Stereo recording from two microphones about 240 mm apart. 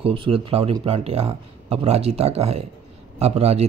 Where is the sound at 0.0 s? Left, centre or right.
Right.